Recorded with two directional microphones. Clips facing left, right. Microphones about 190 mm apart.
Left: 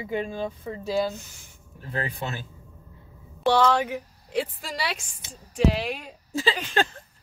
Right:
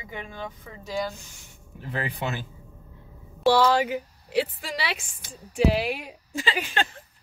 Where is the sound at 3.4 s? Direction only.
5° right (ahead or behind).